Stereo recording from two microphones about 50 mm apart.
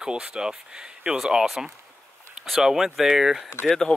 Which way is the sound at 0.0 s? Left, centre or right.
Centre.